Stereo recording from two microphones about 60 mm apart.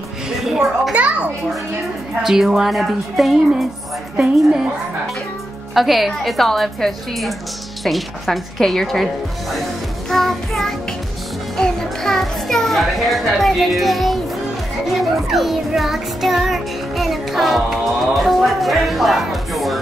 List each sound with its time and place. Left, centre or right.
0.4 s music: centre
0.9 s children playing: right
2.2 s music: centre
5.8 s music: centre